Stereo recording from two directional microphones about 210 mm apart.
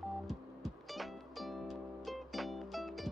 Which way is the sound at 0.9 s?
Centre (ahead or behind).